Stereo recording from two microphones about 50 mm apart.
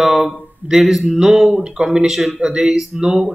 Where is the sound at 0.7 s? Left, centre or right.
Centre.